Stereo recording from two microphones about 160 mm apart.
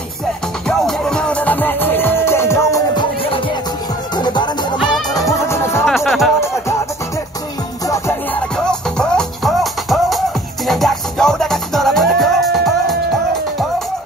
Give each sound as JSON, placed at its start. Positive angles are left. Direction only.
{"t": 0.7, "sound": "music", "side_deg": 5}
{"t": 3.0, "sound": "music", "side_deg": 35}
{"t": 5.9, "sound": "music", "side_deg": 0}
{"t": 7.8, "sound": "music", "side_deg": 20}
{"t": 8.6, "sound": "music", "side_deg": 5}